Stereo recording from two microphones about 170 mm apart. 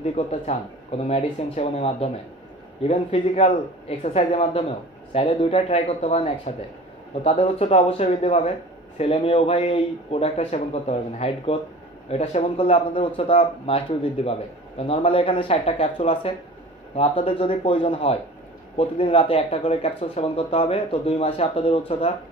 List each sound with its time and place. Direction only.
0.0 s speech: 35° left (ahead or behind)